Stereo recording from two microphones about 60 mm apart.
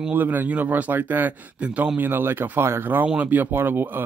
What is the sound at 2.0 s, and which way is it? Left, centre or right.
A man's voice, right.